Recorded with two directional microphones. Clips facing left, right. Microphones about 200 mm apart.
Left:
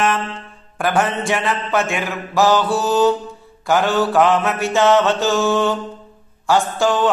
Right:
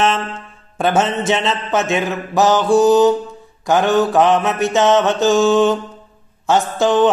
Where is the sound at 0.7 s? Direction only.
25° right (ahead or behind).